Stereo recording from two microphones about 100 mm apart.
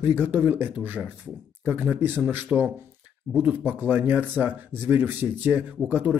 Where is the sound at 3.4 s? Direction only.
20° right (ahead or behind).